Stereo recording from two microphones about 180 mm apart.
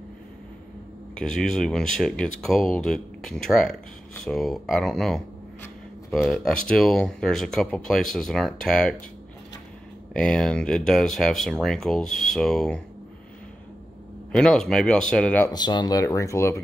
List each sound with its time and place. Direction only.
1.1 s speech: 5° left (ahead or behind)
10.1 s speech: 5° left (ahead or behind)
14.3 s speech: 5° left (ahead or behind)
15.5 s speech: 25° left (ahead or behind)